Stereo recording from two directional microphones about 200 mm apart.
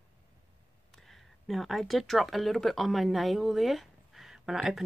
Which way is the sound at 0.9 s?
Centre (ahead or behind).